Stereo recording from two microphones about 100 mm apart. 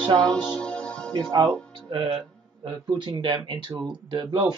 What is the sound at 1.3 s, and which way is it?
Speech, 40° right (ahead or behind).